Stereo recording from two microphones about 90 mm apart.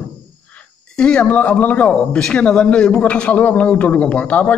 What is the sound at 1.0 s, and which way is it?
A man's voice, 10° left (ahead or behind).